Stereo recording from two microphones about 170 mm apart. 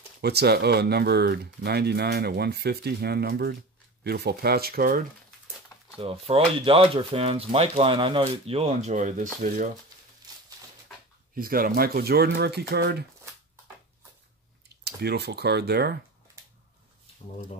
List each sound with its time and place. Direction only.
0.2 s speech: 70° right (ahead or behind)
5.9 s speech: 35° right (ahead or behind); by 9.7 s 50° right (ahead or behind)
11.3 s speech: 60° right (ahead or behind)
14.9 s speech: 75° right (ahead or behind)